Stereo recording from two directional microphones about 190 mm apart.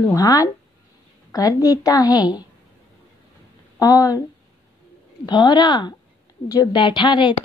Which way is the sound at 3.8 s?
20° left (ahead or behind).